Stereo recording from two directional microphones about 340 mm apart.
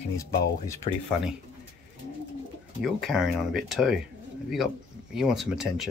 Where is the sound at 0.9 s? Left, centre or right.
Centre.